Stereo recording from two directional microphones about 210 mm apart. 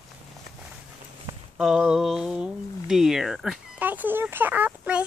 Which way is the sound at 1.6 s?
Centre (ahead or behind).